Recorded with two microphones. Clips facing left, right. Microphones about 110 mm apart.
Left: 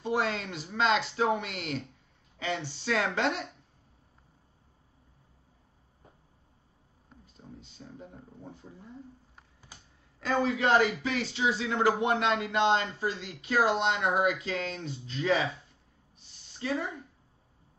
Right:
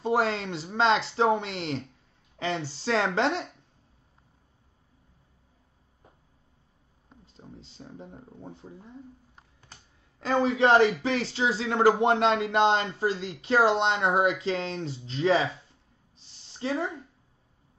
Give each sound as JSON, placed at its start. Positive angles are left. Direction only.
{"t": 0.0, "sound": "a man's voice", "side_deg": -30}
{"t": 7.3, "sound": "speech", "side_deg": -25}
{"t": 10.2, "sound": "a man's voice", "side_deg": -25}
{"t": 16.5, "sound": "a man's voice", "side_deg": -30}